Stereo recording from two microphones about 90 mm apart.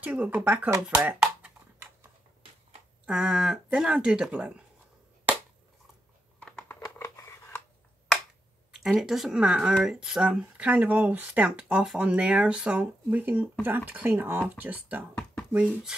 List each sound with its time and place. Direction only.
0.0 s speech: 15° right (ahead or behind)
0.8 s a sound: 15° right (ahead or behind)
3.1 s speech: 5° right (ahead or behind)
6.7 s scratch: 30° left (ahead or behind)
9.0 s speech: 5° right (ahead or behind); by 15.0 s 20° right (ahead or behind)
15.5 s speech: 5° right (ahead or behind)